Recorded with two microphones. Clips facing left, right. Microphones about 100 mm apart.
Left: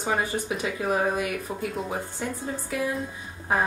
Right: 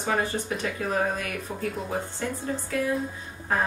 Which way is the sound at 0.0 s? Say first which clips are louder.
Even; 5° left (ahead or behind).